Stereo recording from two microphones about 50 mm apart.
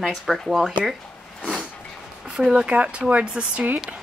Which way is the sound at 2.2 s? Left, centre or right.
Centre.